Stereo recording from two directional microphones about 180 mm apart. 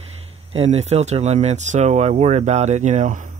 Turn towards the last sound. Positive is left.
turn(degrees=-45)  # may be behind; listen again after turning